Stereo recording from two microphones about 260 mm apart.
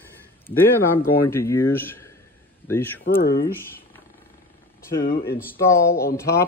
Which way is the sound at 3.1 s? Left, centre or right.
Left.